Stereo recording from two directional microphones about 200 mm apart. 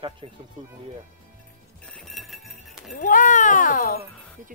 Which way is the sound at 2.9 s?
40° left (ahead or behind).